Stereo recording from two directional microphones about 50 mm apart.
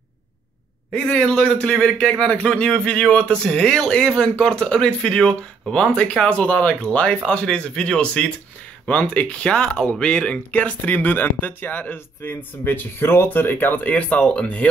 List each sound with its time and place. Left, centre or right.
0.9 s a man's voice: centre
10.8 s speech: left
13.8 s speech: left